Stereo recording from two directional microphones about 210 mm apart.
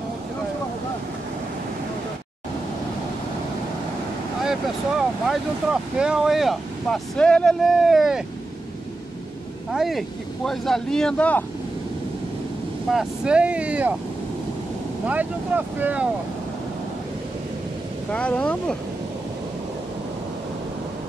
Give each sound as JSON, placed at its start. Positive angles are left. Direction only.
{"t": 4.4, "sound": "speech", "side_deg": 0}
{"t": 9.7, "sound": "speech", "side_deg": 0}
{"t": 12.9, "sound": "speech", "side_deg": -5}
{"t": 15.0, "sound": "speech", "side_deg": -10}
{"t": 18.1, "sound": "speech", "side_deg": 5}